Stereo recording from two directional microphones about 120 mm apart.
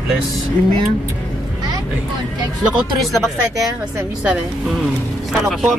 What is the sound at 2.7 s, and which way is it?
Speech, centre (ahead or behind).